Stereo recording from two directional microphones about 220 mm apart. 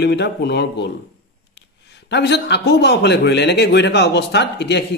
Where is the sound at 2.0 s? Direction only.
50° left (ahead or behind).